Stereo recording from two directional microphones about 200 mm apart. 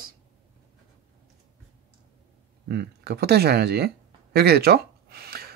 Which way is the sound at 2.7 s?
55° right (ahead or behind).